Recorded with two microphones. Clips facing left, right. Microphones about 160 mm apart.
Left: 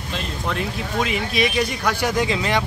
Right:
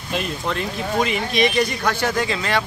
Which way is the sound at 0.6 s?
Centre (ahead or behind).